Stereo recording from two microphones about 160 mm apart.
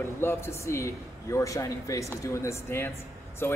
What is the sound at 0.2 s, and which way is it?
A man's voice, 15° left (ahead or behind).